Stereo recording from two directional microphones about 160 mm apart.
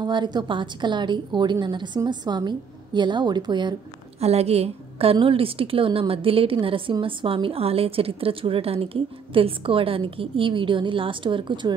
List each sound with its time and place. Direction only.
0.0 s a woman's voice: 25° right (ahead or behind)
4.2 s a woman's voice: 40° right (ahead or behind)